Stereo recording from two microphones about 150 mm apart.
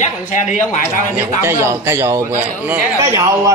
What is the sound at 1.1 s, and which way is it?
A man's voice, 15° right (ahead or behind).